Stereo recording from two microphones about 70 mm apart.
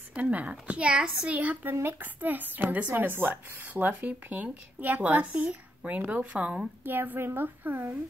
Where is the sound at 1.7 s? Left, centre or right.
Right.